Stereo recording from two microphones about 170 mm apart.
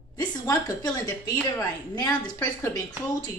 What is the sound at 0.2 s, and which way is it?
A woman's voice, 20° left (ahead or behind).